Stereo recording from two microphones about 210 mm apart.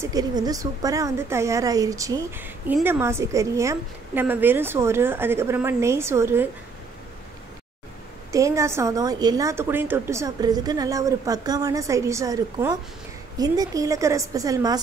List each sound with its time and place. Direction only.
0.0 s a woman's voice: 15° right (ahead or behind)
8.3 s a woman's voice: 15° right (ahead or behind)